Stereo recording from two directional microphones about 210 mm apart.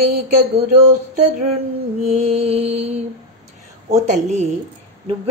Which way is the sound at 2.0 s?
30° right (ahead or behind).